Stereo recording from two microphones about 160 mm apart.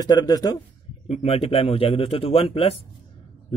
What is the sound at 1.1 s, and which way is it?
A man's voice, 40° left (ahead or behind).